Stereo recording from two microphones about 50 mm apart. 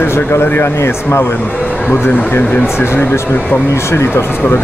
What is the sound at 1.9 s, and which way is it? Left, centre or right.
Speech, left.